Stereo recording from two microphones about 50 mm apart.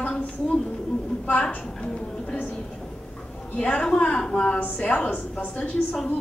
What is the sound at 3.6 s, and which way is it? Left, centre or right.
A woman's voice, centre.